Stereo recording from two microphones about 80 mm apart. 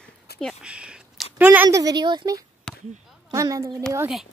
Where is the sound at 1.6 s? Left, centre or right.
Right.